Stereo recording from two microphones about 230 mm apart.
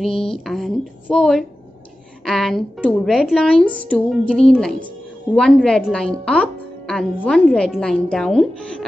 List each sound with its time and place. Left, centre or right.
0.0 s speech: centre